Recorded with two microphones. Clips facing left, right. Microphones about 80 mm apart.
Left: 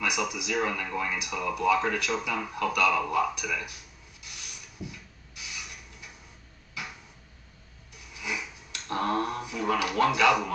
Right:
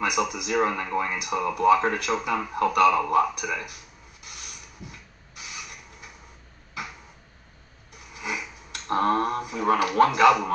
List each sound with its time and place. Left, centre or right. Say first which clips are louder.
0.0 s speech: right 4 dB; right
4.2 s creak: right 2 dB; right
8.1 s a sound: right 3 dB; right